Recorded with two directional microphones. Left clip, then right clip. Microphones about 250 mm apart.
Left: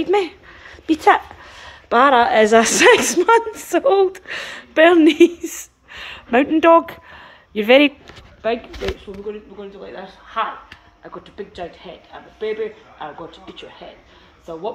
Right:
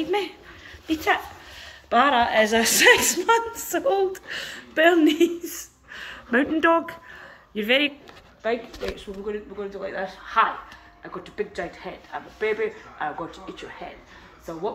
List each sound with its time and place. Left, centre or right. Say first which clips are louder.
0.0 s speech: left 7 dB; left
8.4 s speech: left 5 dB; left
9.3 s a woman's voice: right 1 dB; centre